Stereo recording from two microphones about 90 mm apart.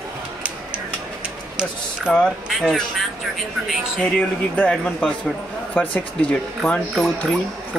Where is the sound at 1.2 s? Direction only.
10° right (ahead or behind).